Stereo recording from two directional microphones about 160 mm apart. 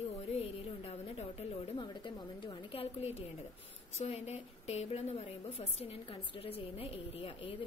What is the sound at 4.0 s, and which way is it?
A woman's voice, 45° left (ahead or behind).